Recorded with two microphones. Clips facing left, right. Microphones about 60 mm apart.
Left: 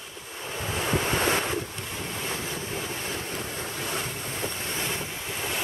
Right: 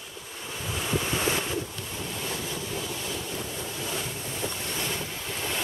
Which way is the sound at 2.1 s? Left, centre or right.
Left.